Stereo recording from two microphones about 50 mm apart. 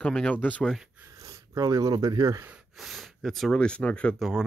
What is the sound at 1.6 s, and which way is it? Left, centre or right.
Speech, right.